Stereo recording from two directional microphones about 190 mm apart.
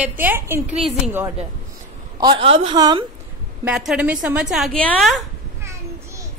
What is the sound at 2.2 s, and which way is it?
Speech, 25° right (ahead or behind).